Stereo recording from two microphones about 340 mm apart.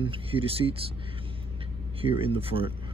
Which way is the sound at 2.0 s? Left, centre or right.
Centre.